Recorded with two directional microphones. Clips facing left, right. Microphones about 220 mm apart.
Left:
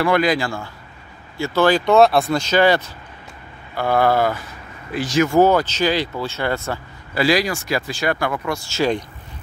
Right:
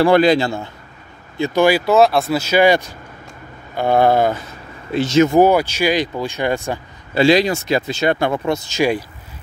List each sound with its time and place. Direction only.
0.0 s speech: 30° right (ahead or behind); by 9.0 s 15° right (ahead or behind)